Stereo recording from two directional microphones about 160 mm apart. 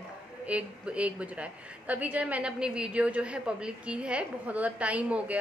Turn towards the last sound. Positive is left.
turn(degrees=-10)  # may be behind; listen again after turning